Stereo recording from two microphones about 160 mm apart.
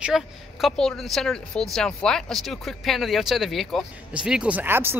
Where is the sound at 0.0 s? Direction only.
Centre (ahead or behind).